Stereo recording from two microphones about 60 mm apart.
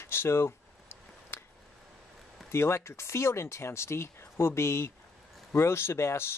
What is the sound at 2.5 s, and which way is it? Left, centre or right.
Speech, left.